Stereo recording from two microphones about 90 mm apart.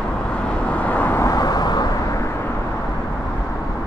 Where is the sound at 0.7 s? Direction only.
15° left (ahead or behind).